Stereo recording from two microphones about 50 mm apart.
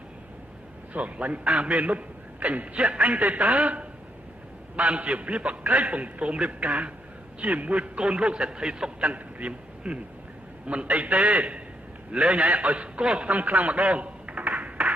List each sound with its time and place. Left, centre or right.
0.9 s a man's voice: right
9.0 s a man's voice: right